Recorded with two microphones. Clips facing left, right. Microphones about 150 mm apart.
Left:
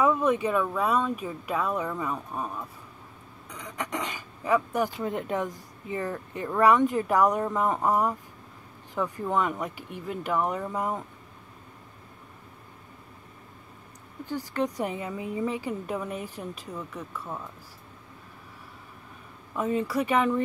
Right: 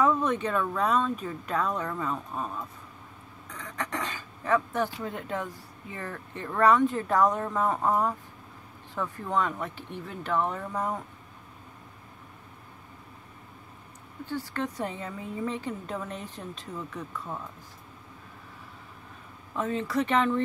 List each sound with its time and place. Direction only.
0.0 s a woman's voice: 10° left (ahead or behind)
3.4 s a sound: 15° left (ahead or behind)
4.6 s a woman's voice: 15° left (ahead or behind)
14.2 s a woman's voice: 15° left (ahead or behind)
19.5 s a woman's voice: 10° left (ahead or behind)